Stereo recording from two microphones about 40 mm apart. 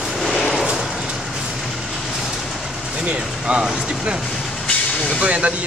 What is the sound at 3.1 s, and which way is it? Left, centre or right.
Speech, right.